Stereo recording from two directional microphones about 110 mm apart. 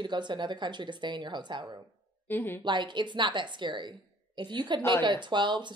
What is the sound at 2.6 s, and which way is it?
A woman's voice, 45° right (ahead or behind).